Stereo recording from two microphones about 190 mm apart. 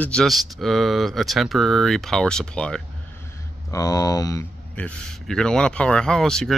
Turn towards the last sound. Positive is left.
turn(degrees=5)  # may be behind; listen again after turning